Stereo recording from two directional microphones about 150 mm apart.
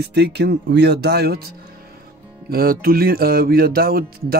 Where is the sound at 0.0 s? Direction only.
90° right.